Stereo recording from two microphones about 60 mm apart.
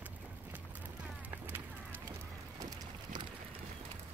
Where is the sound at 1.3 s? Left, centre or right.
Right.